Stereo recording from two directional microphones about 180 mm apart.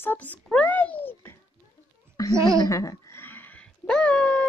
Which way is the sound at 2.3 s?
15° right (ahead or behind).